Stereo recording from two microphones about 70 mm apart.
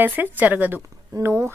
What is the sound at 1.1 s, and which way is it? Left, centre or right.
Speech, right.